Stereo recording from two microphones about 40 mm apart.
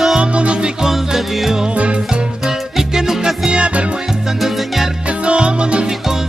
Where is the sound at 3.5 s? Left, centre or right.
Right.